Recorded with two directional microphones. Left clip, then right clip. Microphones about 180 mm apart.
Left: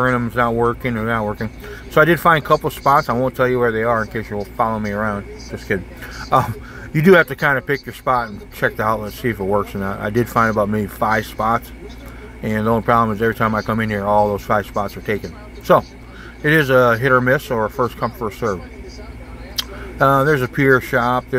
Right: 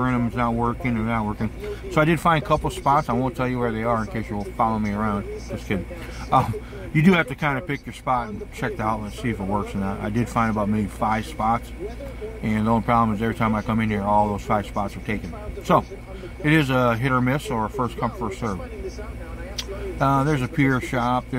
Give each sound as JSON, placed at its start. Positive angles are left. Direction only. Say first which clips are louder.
{"t": 0.0, "sound": "speech", "louder": "left 7 dB", "side_deg": 15}
{"t": 6.3, "sound": "speech", "louder": "left 4 dB", "side_deg": 15}